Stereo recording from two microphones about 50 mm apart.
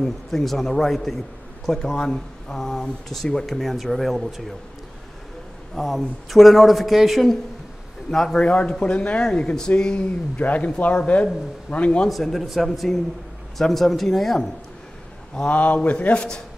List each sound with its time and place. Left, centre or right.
0.0 s a woman's voice: centre
5.8 s a woman's voice: centre
8.1 s speech: centre
8.5 s speech: left
10.3 s speech: left
12.1 s a woman's voice: centre
15.5 s speech: left